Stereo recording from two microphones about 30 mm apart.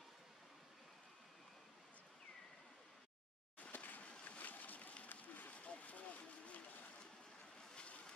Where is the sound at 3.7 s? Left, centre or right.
Left.